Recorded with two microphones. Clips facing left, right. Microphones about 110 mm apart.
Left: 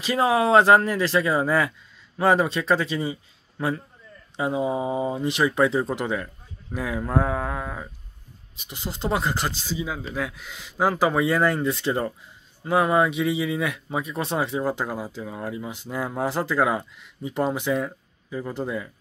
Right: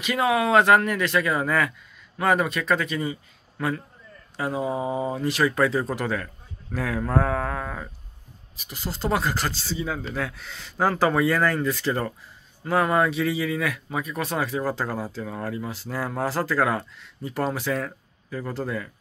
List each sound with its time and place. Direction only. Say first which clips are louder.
0.0 s speech: left 2 dB; 30° left (ahead or behind); by 7.9 s 10° left (ahead or behind)
8.5 s speech: right 1 dB; 20° left (ahead or behind)